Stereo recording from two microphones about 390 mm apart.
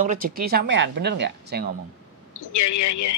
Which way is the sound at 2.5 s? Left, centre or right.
Left.